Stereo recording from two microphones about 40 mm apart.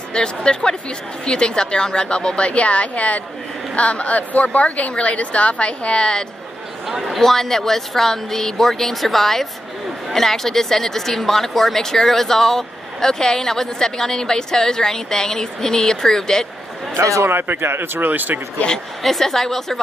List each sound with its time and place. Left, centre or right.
0.1 s a woman's voice: centre
6.9 s a man's voice: centre
7.2 s speech: centre
16.9 s a man's voice: right
19.0 s speech: centre